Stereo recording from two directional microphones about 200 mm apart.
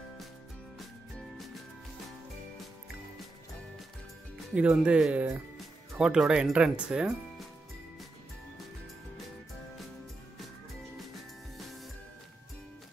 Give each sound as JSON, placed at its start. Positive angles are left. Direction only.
{"t": 4.6, "sound": "speech", "side_deg": -5}